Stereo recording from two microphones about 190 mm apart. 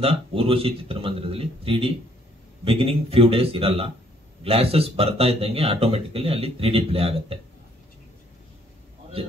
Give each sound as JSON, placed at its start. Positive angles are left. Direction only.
{"t": 0.0, "sound": "a man's voice", "side_deg": -30}